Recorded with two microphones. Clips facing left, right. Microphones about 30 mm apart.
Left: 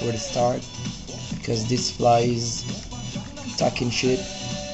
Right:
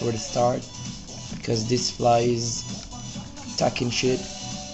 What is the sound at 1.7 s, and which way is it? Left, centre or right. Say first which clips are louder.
Speech: right 1 dB; centre.